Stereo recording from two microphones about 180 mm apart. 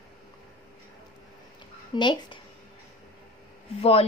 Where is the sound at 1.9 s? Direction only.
25° left (ahead or behind).